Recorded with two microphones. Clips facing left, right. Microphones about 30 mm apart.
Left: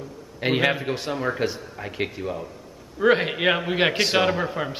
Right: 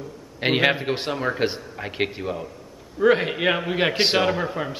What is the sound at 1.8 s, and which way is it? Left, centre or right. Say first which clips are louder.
Speech: right 3 dB; right.